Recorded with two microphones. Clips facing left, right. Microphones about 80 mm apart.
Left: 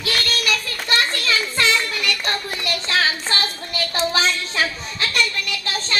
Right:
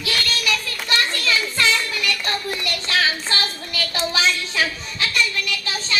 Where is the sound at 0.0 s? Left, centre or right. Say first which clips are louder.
Left 1 dB; left.